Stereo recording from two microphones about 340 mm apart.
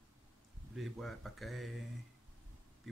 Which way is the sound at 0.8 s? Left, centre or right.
Centre.